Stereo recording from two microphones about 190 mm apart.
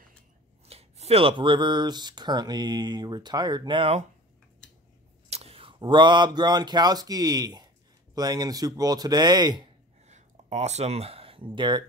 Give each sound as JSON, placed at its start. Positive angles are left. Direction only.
{"t": 0.7, "sound": "speech", "side_deg": -30}
{"t": 5.3, "sound": "speech", "side_deg": -30}
{"t": 10.0, "sound": "a sound", "side_deg": -35}